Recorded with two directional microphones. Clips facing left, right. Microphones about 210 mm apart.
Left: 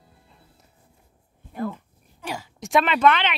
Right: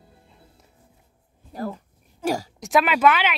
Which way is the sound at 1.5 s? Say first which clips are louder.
Left 1 dB; 35° right (ahead or behind).